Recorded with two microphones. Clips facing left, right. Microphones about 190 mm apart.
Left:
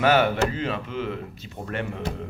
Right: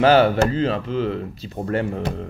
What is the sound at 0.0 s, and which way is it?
Speech, 30° right (ahead or behind).